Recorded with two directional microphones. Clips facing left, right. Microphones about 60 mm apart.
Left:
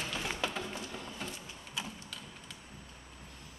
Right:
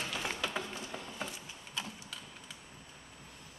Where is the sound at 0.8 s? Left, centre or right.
Centre.